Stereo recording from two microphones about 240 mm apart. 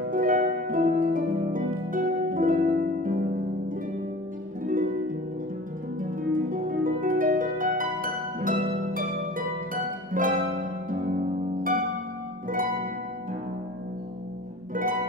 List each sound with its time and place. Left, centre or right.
0.1 s harp: right
5.9 s harp: right
9.8 s music: right
10.9 s harp: right
14.7 s harp: right